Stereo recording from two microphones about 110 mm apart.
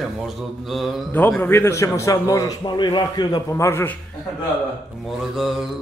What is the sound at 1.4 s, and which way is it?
A man's voice, 20° left (ahead or behind).